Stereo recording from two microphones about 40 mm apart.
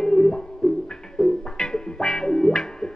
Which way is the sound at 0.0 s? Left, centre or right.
Centre.